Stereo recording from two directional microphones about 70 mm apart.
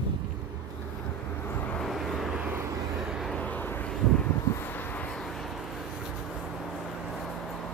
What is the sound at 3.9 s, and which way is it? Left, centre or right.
Vehicle, centre.